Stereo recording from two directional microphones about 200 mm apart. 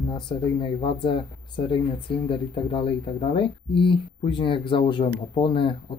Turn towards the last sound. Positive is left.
turn(degrees=25)  # may be behind; listen again after turning